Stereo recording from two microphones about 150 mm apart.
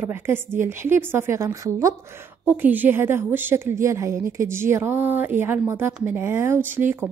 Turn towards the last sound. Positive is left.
turn(degrees=-15)  # may be behind; listen again after turning